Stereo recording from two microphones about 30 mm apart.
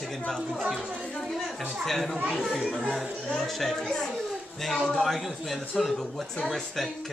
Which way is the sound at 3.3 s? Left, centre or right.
Centre.